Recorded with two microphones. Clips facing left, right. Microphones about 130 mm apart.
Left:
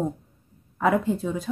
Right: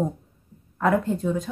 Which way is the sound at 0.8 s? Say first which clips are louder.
Even; centre (ahead or behind).